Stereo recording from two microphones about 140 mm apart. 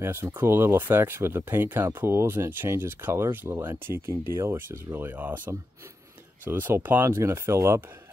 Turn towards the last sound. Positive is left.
turn(degrees=-15)  # may be behind; listen again after turning